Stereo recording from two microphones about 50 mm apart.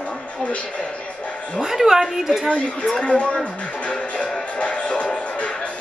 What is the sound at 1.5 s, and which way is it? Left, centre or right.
Speech, centre.